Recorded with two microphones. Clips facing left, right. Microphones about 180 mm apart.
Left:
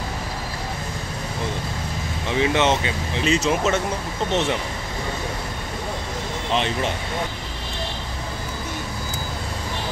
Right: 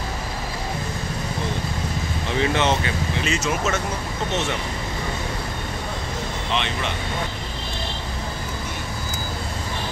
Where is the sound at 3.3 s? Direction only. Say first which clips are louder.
Left 5 dB; 30° left (ahead or behind).